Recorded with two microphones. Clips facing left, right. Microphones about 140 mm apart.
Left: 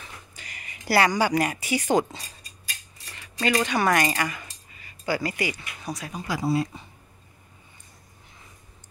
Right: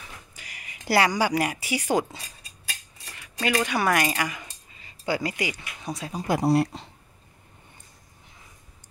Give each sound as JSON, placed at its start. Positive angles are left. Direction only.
{"t": 0.0, "sound": "a sound", "side_deg": -10}
{"t": 3.2, "sound": "cutlery", "side_deg": -10}
{"t": 3.6, "sound": "speech", "side_deg": -5}
{"t": 6.2, "sound": "speech", "side_deg": -60}